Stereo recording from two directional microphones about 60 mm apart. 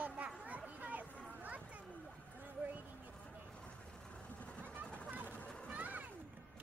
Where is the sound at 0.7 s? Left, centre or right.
Right.